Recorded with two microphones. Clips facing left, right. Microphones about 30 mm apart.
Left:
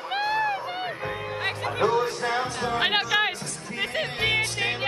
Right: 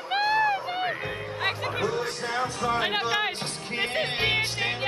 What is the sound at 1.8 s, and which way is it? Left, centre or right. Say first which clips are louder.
Music: left 7 dB; left.